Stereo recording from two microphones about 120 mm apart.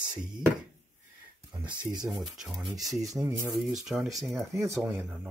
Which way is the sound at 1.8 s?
35° right (ahead or behind).